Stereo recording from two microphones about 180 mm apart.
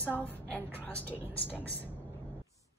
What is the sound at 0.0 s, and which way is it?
A woman's voice, 10° left (ahead or behind).